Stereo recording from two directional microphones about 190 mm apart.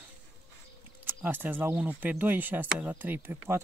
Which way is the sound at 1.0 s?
10° right (ahead or behind).